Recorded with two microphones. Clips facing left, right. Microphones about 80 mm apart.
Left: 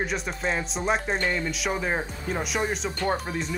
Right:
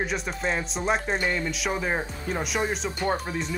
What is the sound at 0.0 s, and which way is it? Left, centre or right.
Speech, centre.